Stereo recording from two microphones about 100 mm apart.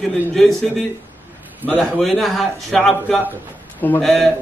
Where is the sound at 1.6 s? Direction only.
15° left (ahead or behind).